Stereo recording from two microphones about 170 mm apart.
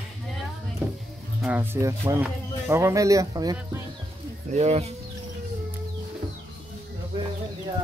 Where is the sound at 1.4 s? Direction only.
10° right (ahead or behind).